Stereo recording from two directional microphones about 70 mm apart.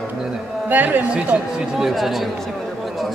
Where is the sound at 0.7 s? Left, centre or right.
Right.